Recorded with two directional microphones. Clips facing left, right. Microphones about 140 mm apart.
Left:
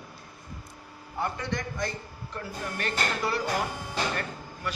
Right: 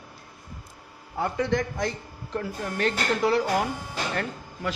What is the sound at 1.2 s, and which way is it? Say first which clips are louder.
A man's voice: right 6 dB; 90° right.